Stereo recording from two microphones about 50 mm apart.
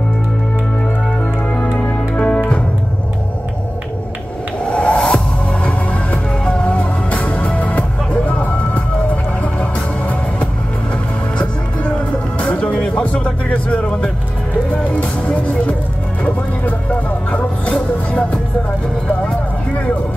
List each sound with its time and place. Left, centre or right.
1.8 s music: left
4.6 s music: left
5.6 s music: left
12.4 s music: left
17.3 s music: left